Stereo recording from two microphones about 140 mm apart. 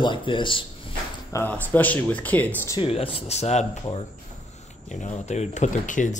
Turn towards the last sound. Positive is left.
turn(degrees=65)  # may be behind; listen again after turning